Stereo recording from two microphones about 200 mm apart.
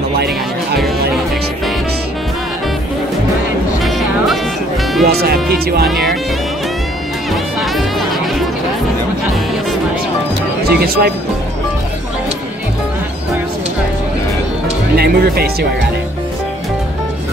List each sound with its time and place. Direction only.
5.0 s speech: 50° right (ahead or behind)
7.2 s music: centre (ahead or behind)
10.6 s speech: 50° right (ahead or behind)
15.0 s speech: 50° right (ahead or behind)